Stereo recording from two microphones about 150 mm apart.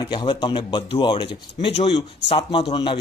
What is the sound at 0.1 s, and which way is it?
A man's voice, 30° left (ahead or behind).